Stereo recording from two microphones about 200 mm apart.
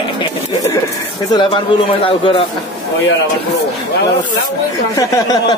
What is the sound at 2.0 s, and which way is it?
Speech, 25° left (ahead or behind).